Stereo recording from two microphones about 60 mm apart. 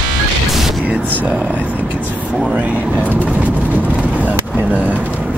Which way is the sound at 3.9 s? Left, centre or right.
Right.